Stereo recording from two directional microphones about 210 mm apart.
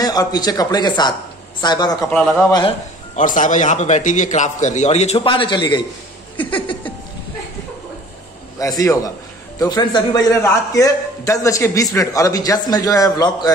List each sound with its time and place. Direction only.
0.0 s speech: 20° left (ahead or behind)
2.0 s a man's voice: 10° left (ahead or behind)
3.2 s a man's voice: 40° left (ahead or behind)
8.5 s a man's voice: 15° left (ahead or behind)